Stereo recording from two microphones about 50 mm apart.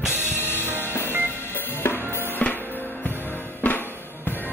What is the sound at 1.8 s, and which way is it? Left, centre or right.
Drum kit, left.